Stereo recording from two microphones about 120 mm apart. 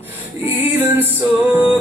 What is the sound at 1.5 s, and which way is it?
Music, 15° right (ahead or behind).